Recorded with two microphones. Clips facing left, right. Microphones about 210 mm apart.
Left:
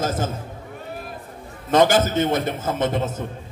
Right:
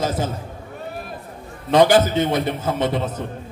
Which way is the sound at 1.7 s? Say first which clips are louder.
Right 2 dB; 45° left (ahead or behind).